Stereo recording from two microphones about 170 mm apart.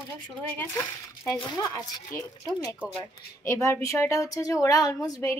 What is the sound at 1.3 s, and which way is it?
A woman's voice, 25° left (ahead or behind).